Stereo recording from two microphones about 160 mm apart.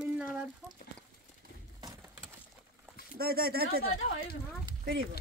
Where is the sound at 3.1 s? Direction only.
70° right (ahead or behind).